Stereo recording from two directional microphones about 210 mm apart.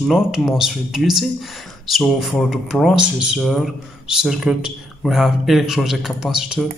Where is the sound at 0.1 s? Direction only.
Centre (ahead or behind).